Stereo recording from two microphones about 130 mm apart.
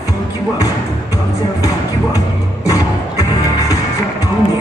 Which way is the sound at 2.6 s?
25° left (ahead or behind).